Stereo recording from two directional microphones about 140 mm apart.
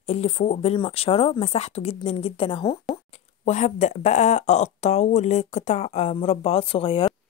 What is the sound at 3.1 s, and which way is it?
Speech, 55° left (ahead or behind).